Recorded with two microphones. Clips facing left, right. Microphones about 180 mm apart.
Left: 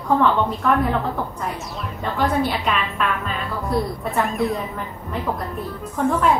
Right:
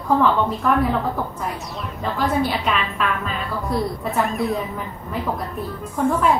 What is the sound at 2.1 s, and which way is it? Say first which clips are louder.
A woman's voice: even; centre (ahead or behind).